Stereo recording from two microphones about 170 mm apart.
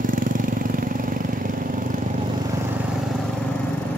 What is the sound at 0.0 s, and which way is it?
Vehicle, 50° right (ahead or behind).